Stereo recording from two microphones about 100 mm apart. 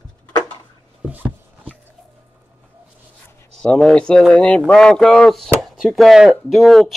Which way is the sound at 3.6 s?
5° left (ahead or behind).